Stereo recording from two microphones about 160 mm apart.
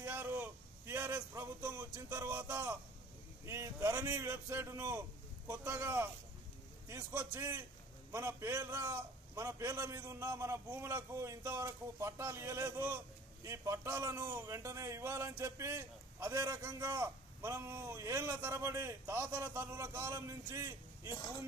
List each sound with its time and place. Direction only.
0.0 s a man's voice: 10° right (ahead or behind)